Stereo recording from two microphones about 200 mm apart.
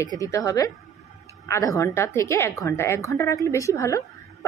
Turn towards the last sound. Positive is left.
turn(degrees=15)  # may be behind; listen again after turning